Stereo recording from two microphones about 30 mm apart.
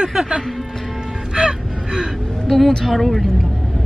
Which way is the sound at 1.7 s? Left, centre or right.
Centre.